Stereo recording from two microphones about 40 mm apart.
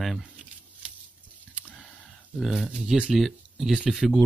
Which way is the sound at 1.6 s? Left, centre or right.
Left.